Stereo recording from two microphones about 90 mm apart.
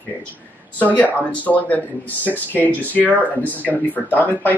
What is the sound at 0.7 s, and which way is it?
Speech, 15° left (ahead or behind).